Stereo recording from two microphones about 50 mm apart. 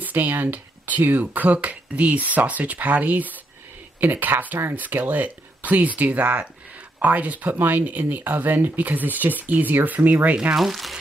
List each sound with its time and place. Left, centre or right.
0.0 s speech: right
10.5 s speech: centre